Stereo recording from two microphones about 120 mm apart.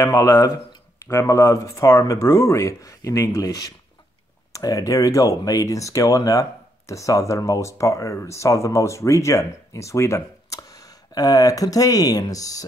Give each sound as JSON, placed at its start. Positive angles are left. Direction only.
{"t": 0.0, "sound": "speech", "side_deg": 20}